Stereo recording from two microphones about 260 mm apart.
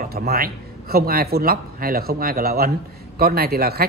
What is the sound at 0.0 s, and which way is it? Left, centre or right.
Speech, right.